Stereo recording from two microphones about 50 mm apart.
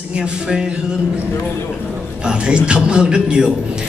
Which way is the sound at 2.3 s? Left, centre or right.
Right.